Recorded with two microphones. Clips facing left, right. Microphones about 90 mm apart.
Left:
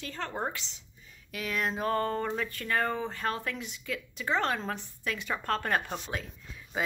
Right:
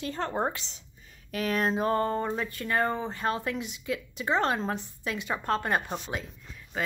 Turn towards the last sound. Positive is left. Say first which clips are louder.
# even
turn(degrees=0)  # may be behind; listen again after turning